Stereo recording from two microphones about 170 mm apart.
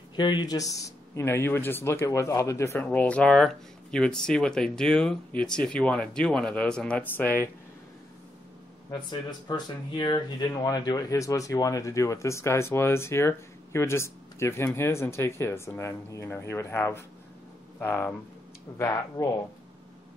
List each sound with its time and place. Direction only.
0.1 s speech: 25° left (ahead or behind); by 7.4 s 10° left (ahead or behind)
9.5 s speech: 25° left (ahead or behind)